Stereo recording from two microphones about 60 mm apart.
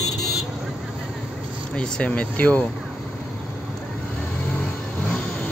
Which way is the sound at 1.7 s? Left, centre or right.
Centre.